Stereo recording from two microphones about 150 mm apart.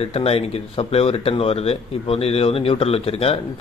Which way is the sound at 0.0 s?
40° left (ahead or behind).